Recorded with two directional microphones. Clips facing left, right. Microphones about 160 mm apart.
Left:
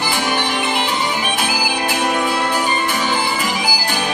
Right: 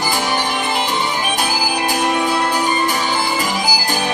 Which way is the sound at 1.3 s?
40° right (ahead or behind).